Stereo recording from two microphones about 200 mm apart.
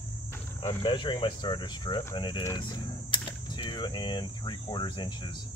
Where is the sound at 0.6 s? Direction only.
25° left (ahead or behind).